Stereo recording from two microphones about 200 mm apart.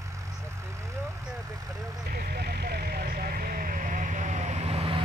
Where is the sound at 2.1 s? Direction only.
50° right (ahead or behind).